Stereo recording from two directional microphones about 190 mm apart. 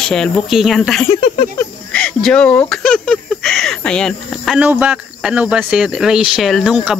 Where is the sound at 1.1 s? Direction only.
25° left (ahead or behind).